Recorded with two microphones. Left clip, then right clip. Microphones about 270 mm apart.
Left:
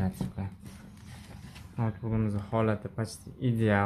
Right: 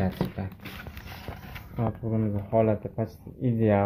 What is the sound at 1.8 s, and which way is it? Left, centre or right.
Speech, centre.